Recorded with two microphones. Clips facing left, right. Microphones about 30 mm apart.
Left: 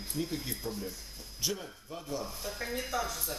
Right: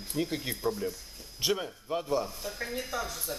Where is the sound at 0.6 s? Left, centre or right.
Centre.